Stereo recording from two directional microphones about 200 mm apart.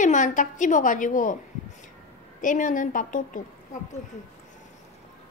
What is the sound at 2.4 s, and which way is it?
A woman's voice, 40° left (ahead or behind).